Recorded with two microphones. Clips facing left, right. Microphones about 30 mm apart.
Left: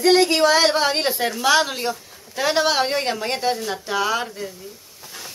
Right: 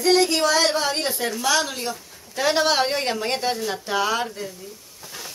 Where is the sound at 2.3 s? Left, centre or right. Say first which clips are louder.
Left 1 dB; centre.